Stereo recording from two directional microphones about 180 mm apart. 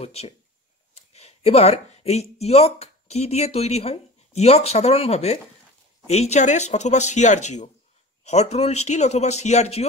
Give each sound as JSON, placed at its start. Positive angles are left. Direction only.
{"t": 0.0, "sound": "speech", "side_deg": 35}